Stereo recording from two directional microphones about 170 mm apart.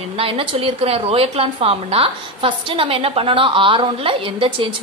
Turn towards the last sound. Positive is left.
turn(degrees=-30)  # may be behind; listen again after turning